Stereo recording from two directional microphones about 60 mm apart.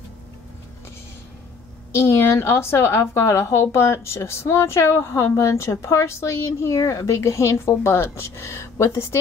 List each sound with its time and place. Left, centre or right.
1.9 s a woman's voice: left